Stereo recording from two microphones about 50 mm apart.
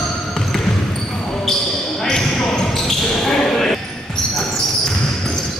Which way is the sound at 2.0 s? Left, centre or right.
Centre.